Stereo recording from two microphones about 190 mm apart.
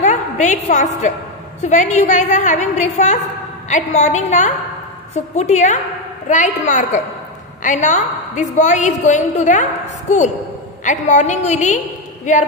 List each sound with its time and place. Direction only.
0.0 s a woman's voice: 40° left (ahead or behind)